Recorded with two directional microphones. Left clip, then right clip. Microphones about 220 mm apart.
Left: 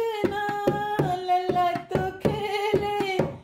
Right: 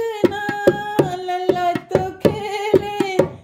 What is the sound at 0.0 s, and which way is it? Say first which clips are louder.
Hands: right 6 dB; 35° right (ahead or behind).